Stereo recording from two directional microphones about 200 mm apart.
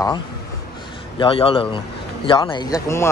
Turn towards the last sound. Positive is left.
turn(degrees=15)  # may be behind; listen again after turning